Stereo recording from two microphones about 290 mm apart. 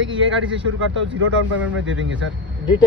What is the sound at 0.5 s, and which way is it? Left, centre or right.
Speech, right.